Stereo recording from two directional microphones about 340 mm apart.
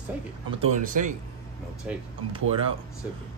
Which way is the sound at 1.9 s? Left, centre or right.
Centre.